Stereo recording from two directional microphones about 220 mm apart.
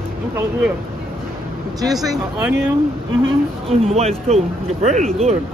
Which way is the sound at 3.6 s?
25° right (ahead or behind).